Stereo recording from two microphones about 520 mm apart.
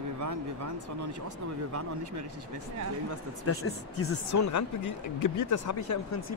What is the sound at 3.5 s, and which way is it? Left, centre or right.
Speech, left.